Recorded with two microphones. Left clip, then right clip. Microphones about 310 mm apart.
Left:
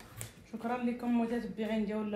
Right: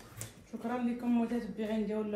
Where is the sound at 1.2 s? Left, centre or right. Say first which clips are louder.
Left 1 dB; left.